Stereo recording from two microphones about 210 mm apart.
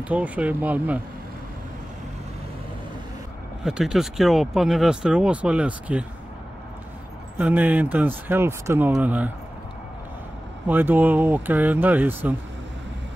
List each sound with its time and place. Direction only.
0.0 s speech: 5° right (ahead or behind)
3.6 s speech: centre (ahead or behind)
7.3 s speech: 5° right (ahead or behind)
10.7 s speech: 10° right (ahead or behind)